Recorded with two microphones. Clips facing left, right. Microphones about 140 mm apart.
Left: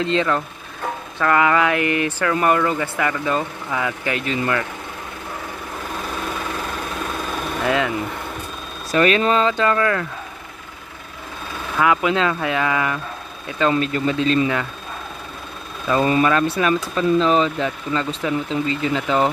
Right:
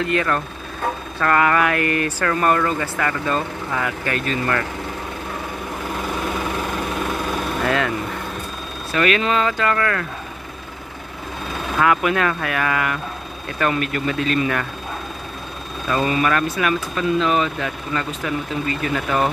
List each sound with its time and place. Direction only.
0.1 s speech: 20° left (ahead or behind)
7.6 s speech: 15° left (ahead or behind)
8.9 s speech: 35° left (ahead or behind)
11.8 s speech: 20° left (ahead or behind)
16.0 s speech: 30° left (ahead or behind)